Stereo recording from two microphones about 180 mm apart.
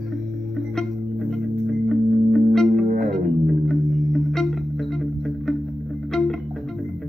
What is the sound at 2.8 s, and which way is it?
Music, 50° right (ahead or behind).